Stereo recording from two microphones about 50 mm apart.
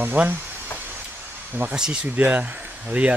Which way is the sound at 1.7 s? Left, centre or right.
Centre.